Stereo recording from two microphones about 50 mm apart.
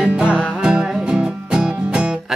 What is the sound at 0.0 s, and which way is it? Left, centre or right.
Music, right.